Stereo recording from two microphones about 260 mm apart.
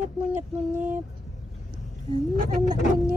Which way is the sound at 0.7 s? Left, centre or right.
Centre.